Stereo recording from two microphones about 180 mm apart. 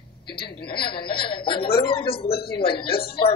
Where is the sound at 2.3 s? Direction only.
60° left (ahead or behind).